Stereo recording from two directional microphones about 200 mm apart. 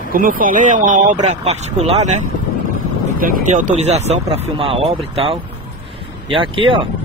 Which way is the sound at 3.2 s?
40° right (ahead or behind).